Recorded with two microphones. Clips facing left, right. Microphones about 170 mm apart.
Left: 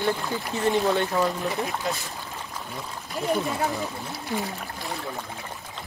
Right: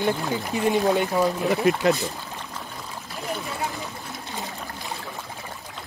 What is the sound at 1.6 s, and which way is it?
Speech, 70° right (ahead or behind).